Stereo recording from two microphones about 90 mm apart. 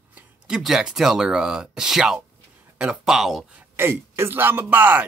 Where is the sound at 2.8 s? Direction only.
5° right (ahead or behind).